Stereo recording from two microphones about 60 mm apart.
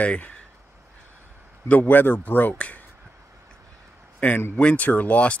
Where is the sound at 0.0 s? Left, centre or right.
Left.